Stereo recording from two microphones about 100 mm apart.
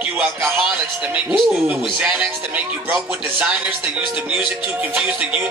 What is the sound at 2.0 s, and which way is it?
Music, 10° right (ahead or behind).